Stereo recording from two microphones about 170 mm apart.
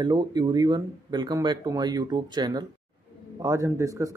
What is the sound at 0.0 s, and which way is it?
Speech, 25° right (ahead or behind).